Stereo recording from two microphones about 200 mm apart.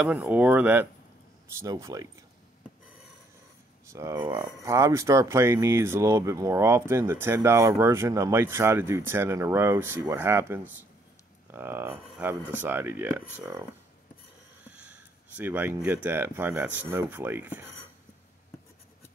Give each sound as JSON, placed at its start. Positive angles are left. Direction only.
{"t": 0.0, "sound": "speech", "side_deg": -10}
{"t": 3.9, "sound": "speech", "side_deg": -15}